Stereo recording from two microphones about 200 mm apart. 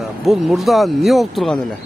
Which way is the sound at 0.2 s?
Centre (ahead or behind).